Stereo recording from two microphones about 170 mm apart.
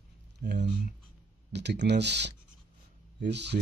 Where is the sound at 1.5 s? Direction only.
90° right.